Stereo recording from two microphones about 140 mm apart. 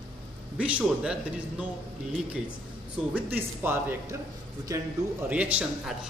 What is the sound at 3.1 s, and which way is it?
A man's voice, 15° right (ahead or behind).